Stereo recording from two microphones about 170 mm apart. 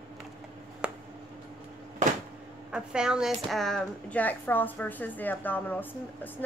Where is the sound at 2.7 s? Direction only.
5° right (ahead or behind).